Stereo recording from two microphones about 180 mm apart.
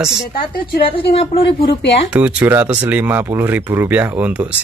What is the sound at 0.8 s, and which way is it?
Speech, 30° left (ahead or behind).